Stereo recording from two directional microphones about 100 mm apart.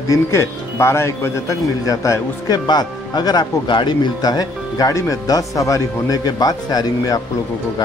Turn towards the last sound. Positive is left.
turn(degrees=40)  # may be behind; listen again after turning